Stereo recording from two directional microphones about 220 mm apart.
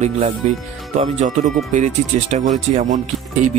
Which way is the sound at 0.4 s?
30° right (ahead or behind).